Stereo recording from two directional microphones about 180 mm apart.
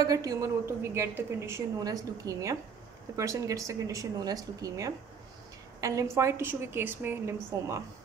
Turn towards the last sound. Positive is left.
turn(degrees=-10)  # may be behind; listen again after turning